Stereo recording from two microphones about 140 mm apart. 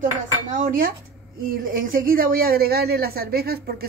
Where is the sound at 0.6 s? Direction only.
90° right.